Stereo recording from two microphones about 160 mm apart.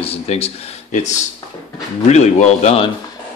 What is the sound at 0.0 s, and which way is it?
A man's voice, 40° left (ahead or behind).